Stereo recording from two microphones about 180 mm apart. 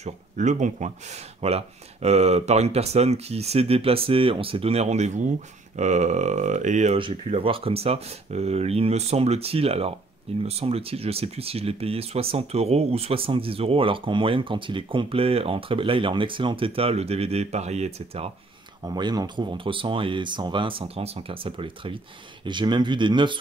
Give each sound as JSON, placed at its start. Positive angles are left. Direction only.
{"t": 0.0, "sound": "speech", "side_deg": -40}
{"t": 7.0, "sound": "speech", "side_deg": -30}
{"t": 18.9, "sound": "speech", "side_deg": -25}